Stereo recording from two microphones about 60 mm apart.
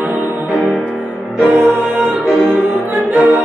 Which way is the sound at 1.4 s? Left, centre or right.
Right.